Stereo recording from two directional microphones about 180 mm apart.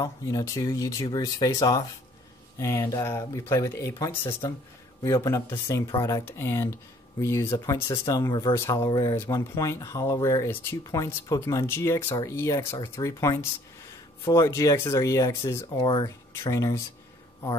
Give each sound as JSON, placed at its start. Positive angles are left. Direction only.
{"t": 0.0, "sound": "speech", "side_deg": 20}